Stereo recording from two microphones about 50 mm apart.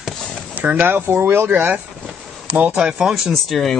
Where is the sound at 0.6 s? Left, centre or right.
Right.